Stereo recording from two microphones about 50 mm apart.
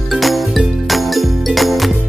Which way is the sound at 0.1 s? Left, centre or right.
Centre.